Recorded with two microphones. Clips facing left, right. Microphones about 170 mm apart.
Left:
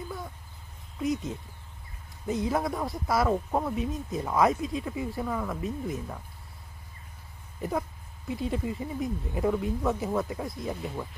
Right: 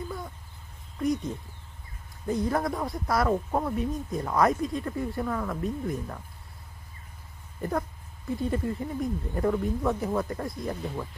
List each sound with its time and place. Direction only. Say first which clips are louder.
0.9 s speech: right 2 dB; centre (ahead or behind)
8.3 s speech: right 2 dB; centre (ahead or behind)